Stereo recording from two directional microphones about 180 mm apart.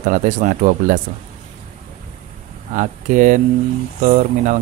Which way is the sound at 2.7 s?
45° right (ahead or behind).